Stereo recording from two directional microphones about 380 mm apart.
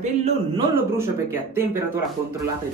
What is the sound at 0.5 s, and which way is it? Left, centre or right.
Speech, centre.